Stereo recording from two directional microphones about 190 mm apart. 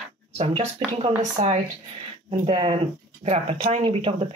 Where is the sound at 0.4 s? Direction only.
30° right (ahead or behind).